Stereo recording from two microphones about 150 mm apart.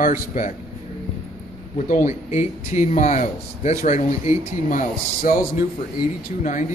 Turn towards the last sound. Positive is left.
turn(degrees=55)  # may be behind; listen again after turning